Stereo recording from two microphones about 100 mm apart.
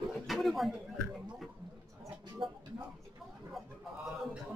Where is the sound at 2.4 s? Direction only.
55° right (ahead or behind).